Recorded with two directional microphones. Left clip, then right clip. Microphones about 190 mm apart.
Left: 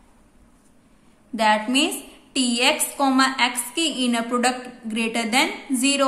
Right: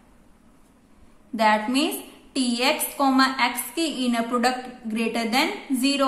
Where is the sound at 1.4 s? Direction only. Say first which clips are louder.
Left 1 dB; 10° left (ahead or behind).